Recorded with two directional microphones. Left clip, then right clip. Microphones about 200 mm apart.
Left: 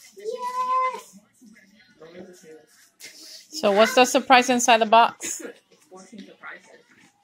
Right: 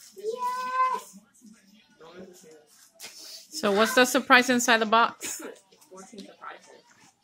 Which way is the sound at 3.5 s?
15° right (ahead or behind).